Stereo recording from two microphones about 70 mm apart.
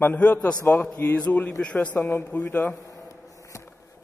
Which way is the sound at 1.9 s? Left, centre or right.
Left.